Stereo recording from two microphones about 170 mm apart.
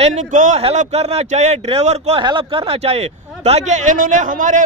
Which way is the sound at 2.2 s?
30° right (ahead or behind).